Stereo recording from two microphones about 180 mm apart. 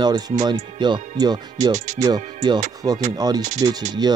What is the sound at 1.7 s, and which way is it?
Speech, 40° right (ahead or behind).